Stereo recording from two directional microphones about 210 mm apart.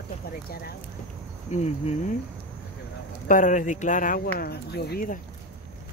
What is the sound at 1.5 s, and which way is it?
Speech, 30° left (ahead or behind).